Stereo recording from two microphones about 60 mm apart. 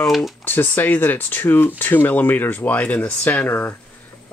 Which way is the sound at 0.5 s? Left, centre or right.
Left.